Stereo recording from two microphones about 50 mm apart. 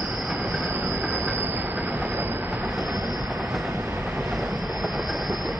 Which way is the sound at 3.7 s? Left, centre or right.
Right.